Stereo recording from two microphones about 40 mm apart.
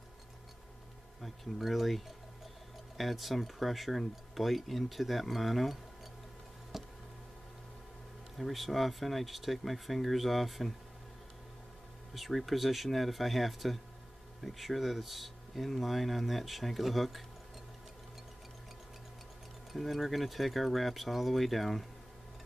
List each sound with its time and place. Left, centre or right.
1.2 s speech: centre
6.7 s a sound: centre
8.4 s speech: centre
12.1 s speech: centre
19.7 s speech: centre